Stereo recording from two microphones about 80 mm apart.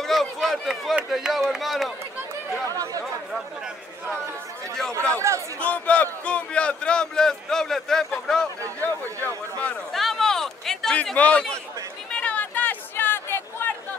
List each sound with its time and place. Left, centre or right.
0.0 s run: centre
1.1 s speech: centre
2.7 s speech: right
5.1 s speech: right
5.6 s speech: centre
8.8 s speech: left
9.9 s a sound: centre
11.1 s speech: centre
12.1 s a sound: centre